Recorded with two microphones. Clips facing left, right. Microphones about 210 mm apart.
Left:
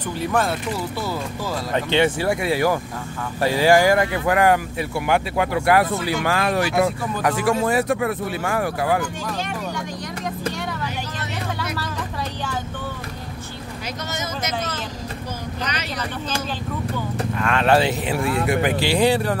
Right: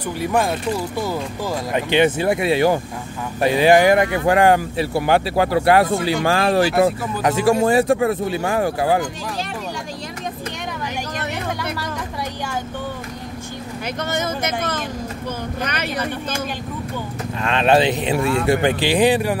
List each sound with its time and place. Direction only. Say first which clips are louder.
0.2 s speech: right 2 dB; 10° right (ahead or behind)
14.1 s speech: right 4 dB; 55° right (ahead or behind)
17.4 s speech: right 2 dB; 20° right (ahead or behind)